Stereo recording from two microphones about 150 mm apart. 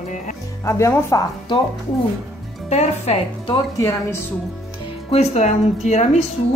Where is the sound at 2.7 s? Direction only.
45° left (ahead or behind).